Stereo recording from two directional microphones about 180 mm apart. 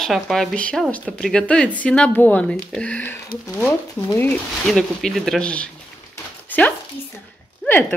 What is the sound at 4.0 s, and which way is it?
Speech, 20° left (ahead or behind).